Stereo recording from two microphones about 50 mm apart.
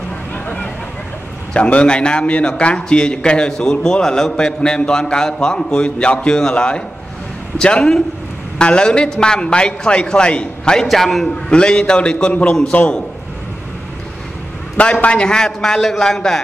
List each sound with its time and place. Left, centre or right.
1.5 s a man's voice: left
10.9 s a man's voice: centre
11.5 s a man's voice: centre
14.8 s a man's voice: left